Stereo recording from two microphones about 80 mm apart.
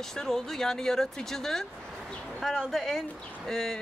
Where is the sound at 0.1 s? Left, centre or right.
Centre.